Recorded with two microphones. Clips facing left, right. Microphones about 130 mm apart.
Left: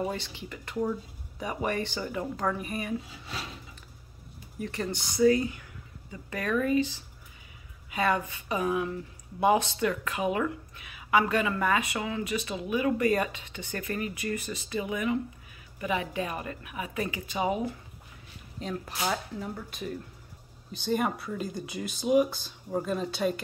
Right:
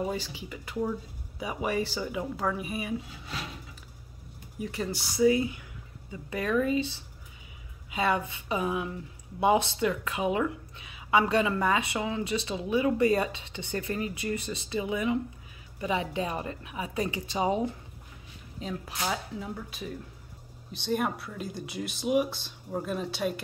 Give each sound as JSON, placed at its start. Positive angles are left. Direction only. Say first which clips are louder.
{"t": 0.1, "sound": "speech", "louder": "right 2 dB", "side_deg": -5}
{"t": 4.6, "sound": "speech", "louder": "even", "side_deg": -5}
{"t": 7.9, "sound": "speech", "louder": "even", "side_deg": -20}
{"t": 18.6, "sound": "speech", "louder": "left 1 dB", "side_deg": -5}